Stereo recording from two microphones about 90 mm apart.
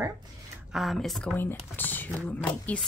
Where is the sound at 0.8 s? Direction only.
Centre (ahead or behind).